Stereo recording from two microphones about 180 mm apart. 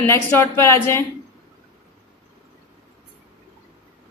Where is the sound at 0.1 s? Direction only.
15° left (ahead or behind).